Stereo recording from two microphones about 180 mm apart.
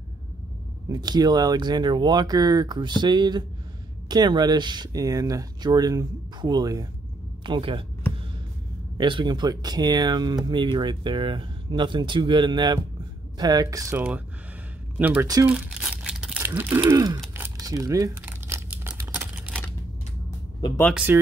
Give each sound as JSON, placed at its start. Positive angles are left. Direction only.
{"t": 0.8, "sound": "speech", "side_deg": -20}
{"t": 8.9, "sound": "speech", "side_deg": -25}
{"t": 15.4, "sound": "crumpling", "side_deg": -10}
{"t": 16.8, "sound": "speech", "side_deg": -20}
{"t": 17.3, "sound": "crumpling", "side_deg": -15}
{"t": 20.6, "sound": "speech", "side_deg": 15}
{"t": 20.9, "sound": "speech", "side_deg": -10}